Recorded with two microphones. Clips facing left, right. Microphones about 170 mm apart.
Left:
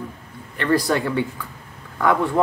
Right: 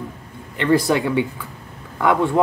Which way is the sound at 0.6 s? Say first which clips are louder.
Right 3 dB; 20° right (ahead or behind).